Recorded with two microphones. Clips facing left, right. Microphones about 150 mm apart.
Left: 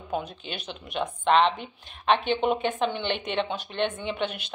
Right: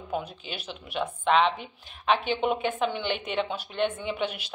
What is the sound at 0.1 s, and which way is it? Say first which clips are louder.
A woman's voice: left 1 dB; 5° right (ahead or behind).